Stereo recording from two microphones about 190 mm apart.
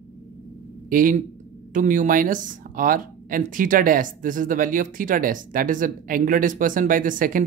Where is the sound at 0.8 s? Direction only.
45° right (ahead or behind).